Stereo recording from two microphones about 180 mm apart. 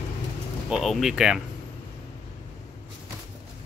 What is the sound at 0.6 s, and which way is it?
Speech, centre (ahead or behind).